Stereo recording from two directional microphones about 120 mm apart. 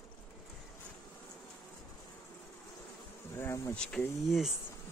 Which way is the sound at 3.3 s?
20° left (ahead or behind).